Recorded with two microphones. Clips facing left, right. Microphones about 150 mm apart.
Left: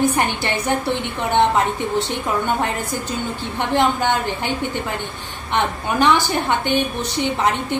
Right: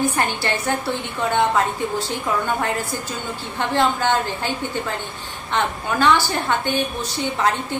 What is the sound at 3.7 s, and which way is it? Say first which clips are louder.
Speech: left 1 dB; 15° left (ahead or behind).